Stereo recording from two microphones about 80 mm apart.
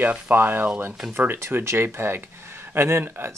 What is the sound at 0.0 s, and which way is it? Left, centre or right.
Speech, right.